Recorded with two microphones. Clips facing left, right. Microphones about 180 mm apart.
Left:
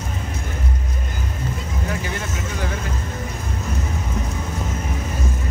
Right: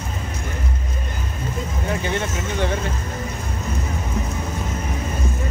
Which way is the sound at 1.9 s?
25° right (ahead or behind).